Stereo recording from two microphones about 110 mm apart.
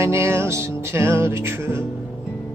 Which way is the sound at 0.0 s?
25° right (ahead or behind).